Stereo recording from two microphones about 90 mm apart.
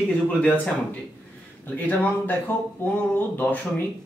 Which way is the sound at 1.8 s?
20° left (ahead or behind).